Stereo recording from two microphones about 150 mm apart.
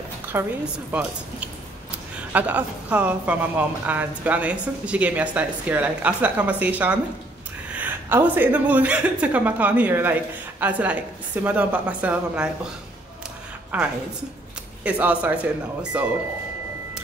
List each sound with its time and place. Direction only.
0.3 s a woman's voice: 15° right (ahead or behind)
2.1 s a woman's voice: 10° right (ahead or behind)
13.7 s a woman's voice: 10° right (ahead or behind)